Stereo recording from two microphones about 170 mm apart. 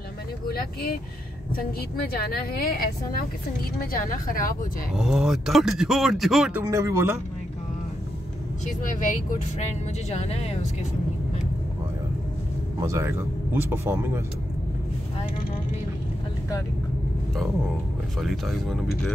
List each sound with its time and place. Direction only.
0.5 s a woman's voice: 60° left (ahead or behind)
2.1 s a woman's voice: 60° left (ahead or behind)
4.9 s speech: 5° right (ahead or behind)
6.6 s speech: 15° right (ahead or behind)
9.3 s speech: 40° left (ahead or behind)
12.8 s speech: 15° right (ahead or behind)
18.2 s speech: centre (ahead or behind)